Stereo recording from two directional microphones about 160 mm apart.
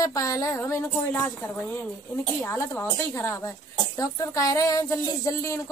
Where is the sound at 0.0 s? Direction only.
20° left (ahead or behind).